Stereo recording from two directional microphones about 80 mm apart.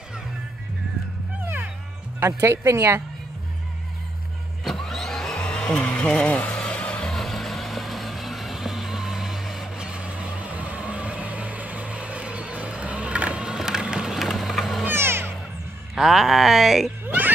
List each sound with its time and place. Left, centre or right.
2.1 s speech: right
4.6 s vacuum cleaner: centre
14.9 s music: right
15.9 s speech: centre